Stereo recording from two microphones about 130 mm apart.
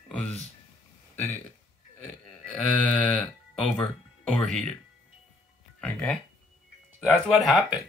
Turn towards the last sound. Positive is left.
turn(degrees=0)  # may be behind; listen again after turning